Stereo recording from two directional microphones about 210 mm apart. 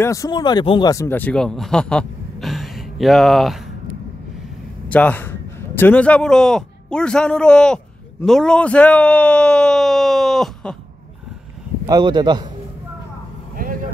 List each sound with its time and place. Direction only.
0.0 s speech: 15° left (ahead or behind)
4.8 s a man's voice: 5° left (ahead or behind)
11.8 s a man's voice: 20° right (ahead or behind)
13.6 s vehicle: 40° right (ahead or behind)